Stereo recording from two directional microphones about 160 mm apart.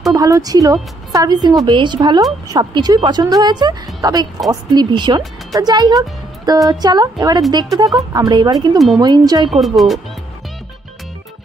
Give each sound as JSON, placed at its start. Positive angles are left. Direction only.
{"t": 0.1, "sound": "speech", "side_deg": -20}
{"t": 8.7, "sound": "speech", "side_deg": 0}
{"t": 9.0, "sound": "speech", "side_deg": -25}
{"t": 9.5, "sound": "speech", "side_deg": 0}